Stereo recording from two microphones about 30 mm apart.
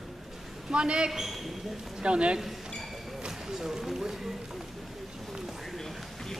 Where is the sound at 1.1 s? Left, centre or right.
Centre.